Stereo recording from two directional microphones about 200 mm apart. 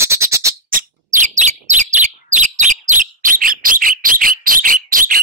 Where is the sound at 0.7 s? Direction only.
40° right (ahead or behind).